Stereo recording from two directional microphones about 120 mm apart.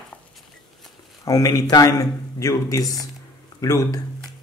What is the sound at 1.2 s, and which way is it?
Speech, 30° left (ahead or behind).